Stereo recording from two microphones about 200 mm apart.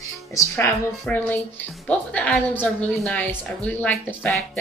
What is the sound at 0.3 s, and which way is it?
A woman's voice, 15° left (ahead or behind).